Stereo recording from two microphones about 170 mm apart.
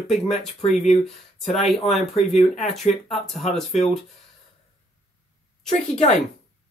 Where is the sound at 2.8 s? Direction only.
Centre (ahead or behind).